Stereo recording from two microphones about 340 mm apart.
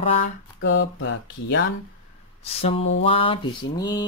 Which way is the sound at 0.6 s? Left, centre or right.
Left.